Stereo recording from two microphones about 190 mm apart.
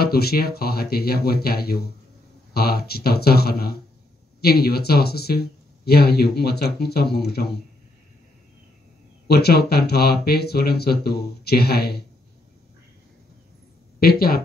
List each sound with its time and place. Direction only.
0.0 s speech: 55° left (ahead or behind)
9.3 s speech: 60° left (ahead or behind)
13.9 s speech: 55° left (ahead or behind)